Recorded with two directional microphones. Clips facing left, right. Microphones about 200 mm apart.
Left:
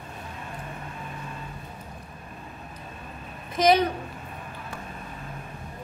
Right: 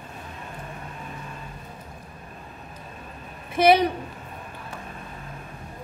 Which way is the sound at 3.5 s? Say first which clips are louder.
Right 3 dB; 10° right (ahead or behind).